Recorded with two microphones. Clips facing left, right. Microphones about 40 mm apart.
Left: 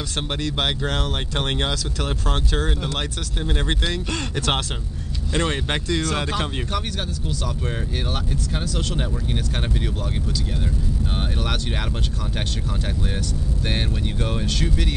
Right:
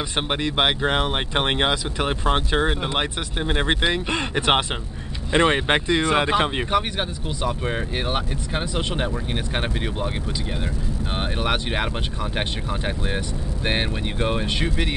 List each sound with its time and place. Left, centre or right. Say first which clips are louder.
0.3 s speech: right 3 dB; right
11.1 s speech: right 6 dB; right